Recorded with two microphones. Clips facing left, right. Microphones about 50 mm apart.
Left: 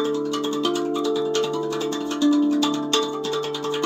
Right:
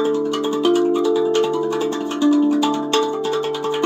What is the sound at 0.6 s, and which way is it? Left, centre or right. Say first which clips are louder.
Music: right 9 dB; right.